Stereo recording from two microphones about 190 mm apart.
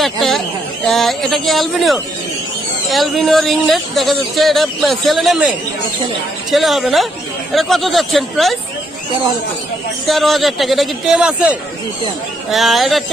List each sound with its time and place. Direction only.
0.0 s speech: centre (ahead or behind)
6.5 s speech: centre (ahead or behind)
10.0 s speech: centre (ahead or behind)